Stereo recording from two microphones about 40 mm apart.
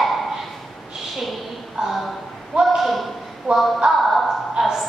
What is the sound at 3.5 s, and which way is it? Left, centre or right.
Speech, centre.